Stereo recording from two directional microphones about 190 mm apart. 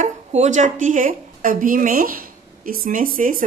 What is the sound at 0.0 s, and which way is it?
A woman's voice, 40° right (ahead or behind).